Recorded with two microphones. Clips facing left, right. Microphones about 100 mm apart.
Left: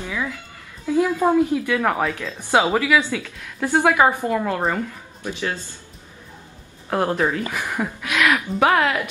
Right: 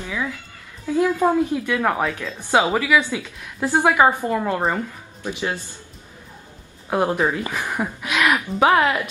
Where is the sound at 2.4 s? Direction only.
15° right (ahead or behind).